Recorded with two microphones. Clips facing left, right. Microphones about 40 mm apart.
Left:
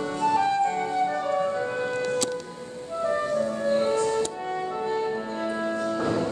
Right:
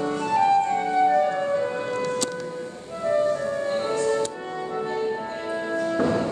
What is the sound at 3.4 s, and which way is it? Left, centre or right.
Music, centre.